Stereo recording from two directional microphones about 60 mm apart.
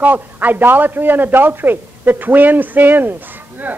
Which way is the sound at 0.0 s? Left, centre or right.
Right.